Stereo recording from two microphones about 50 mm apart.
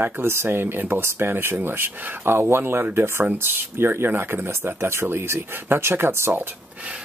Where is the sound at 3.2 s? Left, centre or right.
Right.